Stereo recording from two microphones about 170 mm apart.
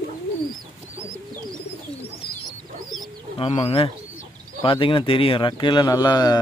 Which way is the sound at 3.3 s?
35° left (ahead or behind).